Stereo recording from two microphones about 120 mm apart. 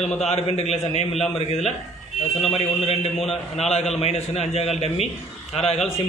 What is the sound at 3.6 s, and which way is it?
A man's voice, 60° left (ahead or behind).